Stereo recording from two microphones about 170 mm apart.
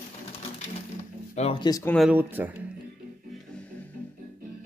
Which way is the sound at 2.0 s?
10° right (ahead or behind).